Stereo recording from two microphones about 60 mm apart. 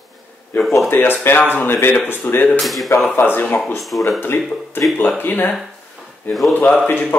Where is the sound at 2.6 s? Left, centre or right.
Centre.